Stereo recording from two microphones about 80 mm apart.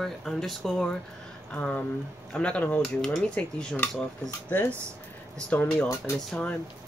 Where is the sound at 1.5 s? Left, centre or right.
Centre.